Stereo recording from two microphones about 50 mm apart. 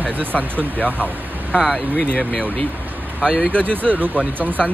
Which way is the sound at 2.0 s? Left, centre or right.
Left.